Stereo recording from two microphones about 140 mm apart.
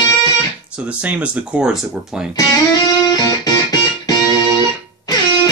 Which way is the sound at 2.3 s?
25° left (ahead or behind).